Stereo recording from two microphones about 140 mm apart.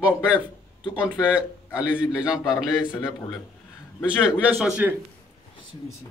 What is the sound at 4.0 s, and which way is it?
Speech, 5° right (ahead or behind).